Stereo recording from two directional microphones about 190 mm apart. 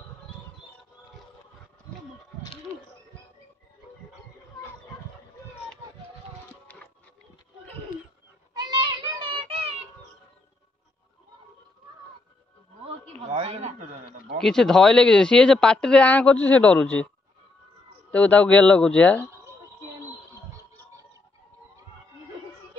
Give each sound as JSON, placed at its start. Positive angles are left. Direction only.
{"t": 6.7, "sound": "music", "side_deg": 5}
{"t": 8.5, "sound": "child singing", "side_deg": -20}
{"t": 13.3, "sound": "a sound", "side_deg": -35}
{"t": 14.4, "sound": "speech", "side_deg": 5}
{"t": 18.1, "sound": "speech", "side_deg": 5}